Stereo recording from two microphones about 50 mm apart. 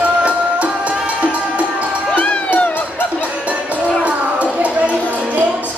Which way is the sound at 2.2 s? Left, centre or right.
Left.